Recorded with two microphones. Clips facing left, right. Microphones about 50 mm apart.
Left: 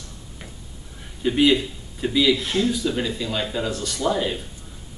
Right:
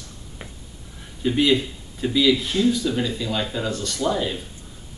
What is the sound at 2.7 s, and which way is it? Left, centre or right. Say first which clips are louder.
Speech: right 1 dB; centre.